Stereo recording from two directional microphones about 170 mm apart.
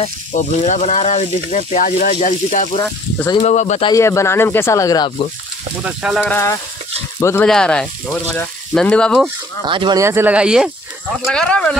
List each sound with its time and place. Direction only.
0.0 s speech: 40° left (ahead or behind)
2.8 s speech: 15° left (ahead or behind)
3.4 s speech: 45° left (ahead or behind)
3.8 s speech: 20° left (ahead or behind)
5.9 s speech: 5° right (ahead or behind)
6.2 s speech: 15° left (ahead or behind)
7.4 s speech: 5° left (ahead or behind)
9.7 s speech: 25° right (ahead or behind)
10.0 s speech: 10° right (ahead or behind); by 11.7 s 5° left (ahead or behind)